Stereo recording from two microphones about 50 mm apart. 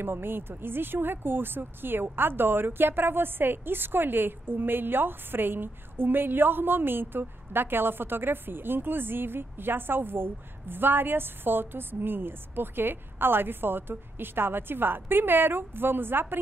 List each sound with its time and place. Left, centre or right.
0.0 s speech: right